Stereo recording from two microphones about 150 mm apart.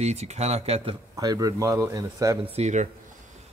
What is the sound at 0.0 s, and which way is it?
Speech, 45° right (ahead or behind).